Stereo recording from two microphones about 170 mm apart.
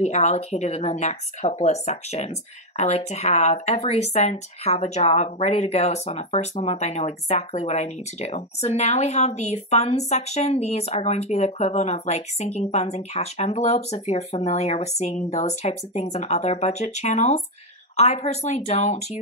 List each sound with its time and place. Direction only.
0.0 s speech: 40° left (ahead or behind)